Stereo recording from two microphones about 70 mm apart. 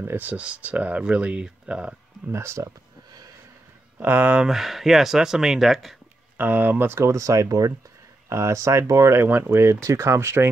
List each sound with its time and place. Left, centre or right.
0.0 s speech: right
2.3 s speech: right
4.0 s speech: right
4.5 s speech: centre
6.3 s speech: right
8.3 s speech: right